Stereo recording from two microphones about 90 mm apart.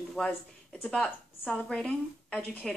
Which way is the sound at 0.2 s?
10° left (ahead or behind).